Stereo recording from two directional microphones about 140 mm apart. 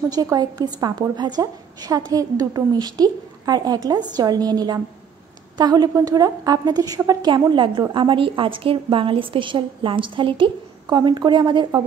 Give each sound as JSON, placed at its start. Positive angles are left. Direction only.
{"t": 0.1, "sound": "a woman's voice", "side_deg": -25}